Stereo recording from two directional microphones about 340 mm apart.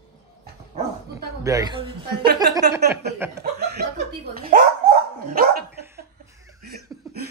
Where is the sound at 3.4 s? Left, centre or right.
Right.